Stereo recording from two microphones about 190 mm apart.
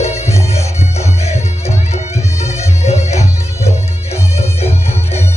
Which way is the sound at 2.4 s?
35° left (ahead or behind).